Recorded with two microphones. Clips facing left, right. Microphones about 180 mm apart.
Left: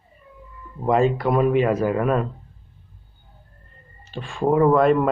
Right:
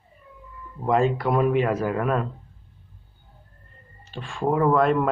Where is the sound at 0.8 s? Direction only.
Centre (ahead or behind).